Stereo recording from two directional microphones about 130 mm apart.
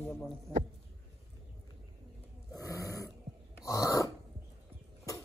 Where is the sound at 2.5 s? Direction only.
25° left (ahead or behind).